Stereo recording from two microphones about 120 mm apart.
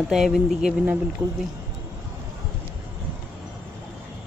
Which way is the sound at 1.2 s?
15° right (ahead or behind).